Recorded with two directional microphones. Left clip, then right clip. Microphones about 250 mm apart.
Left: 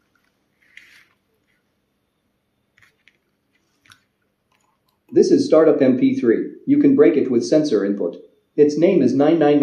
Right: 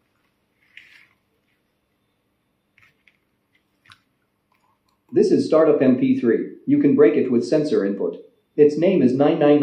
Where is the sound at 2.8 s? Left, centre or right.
Centre.